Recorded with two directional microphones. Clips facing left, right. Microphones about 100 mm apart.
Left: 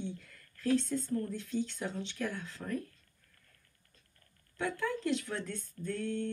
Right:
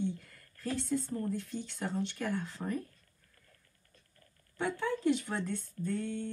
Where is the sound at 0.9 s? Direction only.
15° right (ahead or behind).